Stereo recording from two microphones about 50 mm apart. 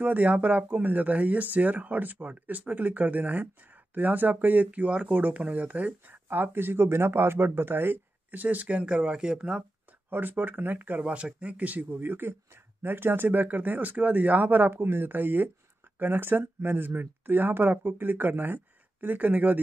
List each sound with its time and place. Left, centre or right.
0.0 s speech: right
6.2 s speech: right
10.0 s speech: right
11.0 s speech: right